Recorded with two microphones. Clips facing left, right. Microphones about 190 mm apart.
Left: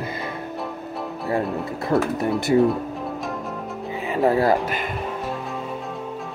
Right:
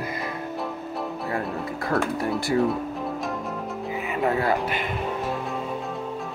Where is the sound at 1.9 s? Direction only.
25° left (ahead or behind).